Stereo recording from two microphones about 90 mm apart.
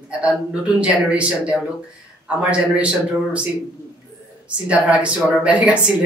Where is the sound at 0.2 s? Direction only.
15° right (ahead or behind).